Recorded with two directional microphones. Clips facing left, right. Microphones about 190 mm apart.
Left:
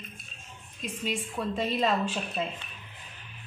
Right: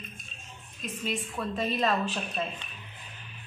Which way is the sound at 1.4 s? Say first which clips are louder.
Left 3 dB; 20° left (ahead or behind).